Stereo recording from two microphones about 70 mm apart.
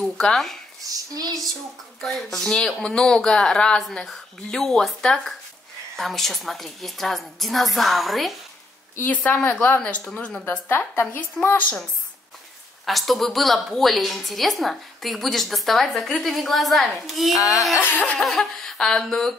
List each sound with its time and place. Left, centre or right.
0.2 s speech: centre
0.8 s a sound: right
2.0 s a woman's voice: centre
9.0 s a woman's voice: left
10.5 s a woman's voice: left
12.8 s a woman's voice: centre
17.4 s a sound: left
17.8 s a woman's voice: left
18.1 s speech: centre